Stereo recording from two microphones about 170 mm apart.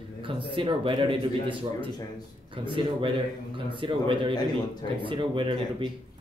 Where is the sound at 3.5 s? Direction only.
30° right (ahead or behind).